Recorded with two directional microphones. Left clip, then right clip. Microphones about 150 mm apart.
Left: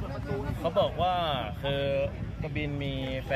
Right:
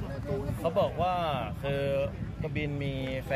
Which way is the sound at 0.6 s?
15° right (ahead or behind).